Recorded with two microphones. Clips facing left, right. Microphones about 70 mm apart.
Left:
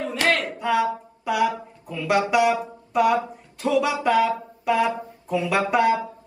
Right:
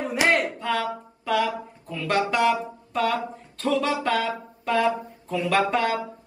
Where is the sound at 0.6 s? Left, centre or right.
Centre.